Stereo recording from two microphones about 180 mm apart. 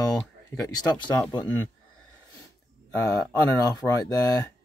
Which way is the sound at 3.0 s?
20° left (ahead or behind).